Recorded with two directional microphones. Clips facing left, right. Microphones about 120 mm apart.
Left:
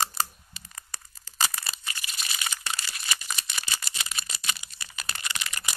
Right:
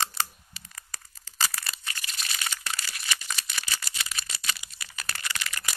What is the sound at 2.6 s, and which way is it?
Crumpling, 25° left (ahead or behind).